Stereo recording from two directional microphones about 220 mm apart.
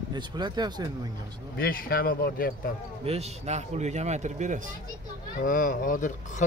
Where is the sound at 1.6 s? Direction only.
40° left (ahead or behind).